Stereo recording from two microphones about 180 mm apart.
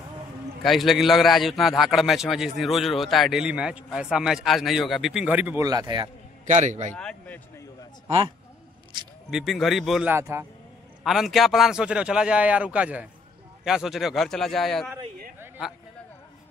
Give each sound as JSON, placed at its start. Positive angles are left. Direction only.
{"t": 0.6, "sound": "a man's voice", "side_deg": 0}
{"t": 5.6, "sound": "a man's voice", "side_deg": -20}
{"t": 6.4, "sound": "a man's voice", "side_deg": -40}
{"t": 6.9, "sound": "speech", "side_deg": 5}
{"t": 9.3, "sound": "a man's voice", "side_deg": 0}
{"t": 10.1, "sound": "a man's voice", "side_deg": -15}
{"t": 11.1, "sound": "a man's voice", "side_deg": 0}
{"t": 15.4, "sound": "a sound", "side_deg": -10}